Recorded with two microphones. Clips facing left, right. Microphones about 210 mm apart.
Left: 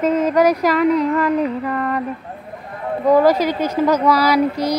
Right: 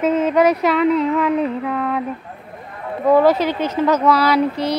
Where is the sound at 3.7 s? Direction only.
10° left (ahead or behind).